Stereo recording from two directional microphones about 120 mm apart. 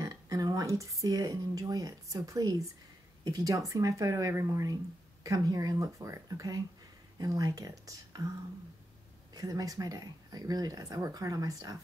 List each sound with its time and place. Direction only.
0.0 s speech: 30° right (ahead or behind)
9.3 s speech: 30° right (ahead or behind)